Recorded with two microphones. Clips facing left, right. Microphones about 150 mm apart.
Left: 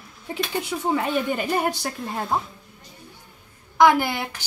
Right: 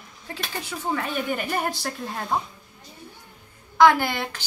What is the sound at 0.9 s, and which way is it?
A woman's voice, 15° left (ahead or behind).